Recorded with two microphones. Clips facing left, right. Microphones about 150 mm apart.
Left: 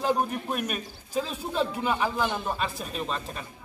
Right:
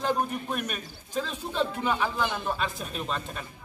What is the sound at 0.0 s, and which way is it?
A man's voice, 5° left (ahead or behind).